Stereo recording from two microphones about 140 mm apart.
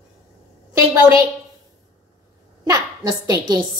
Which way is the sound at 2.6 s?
25° right (ahead or behind).